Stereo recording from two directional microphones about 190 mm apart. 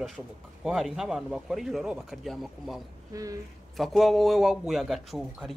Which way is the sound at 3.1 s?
20° right (ahead or behind).